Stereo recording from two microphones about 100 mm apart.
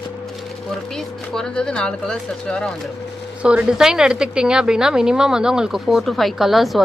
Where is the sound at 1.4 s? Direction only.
10° left (ahead or behind).